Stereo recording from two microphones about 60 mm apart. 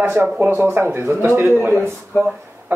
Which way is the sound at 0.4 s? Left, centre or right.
Right.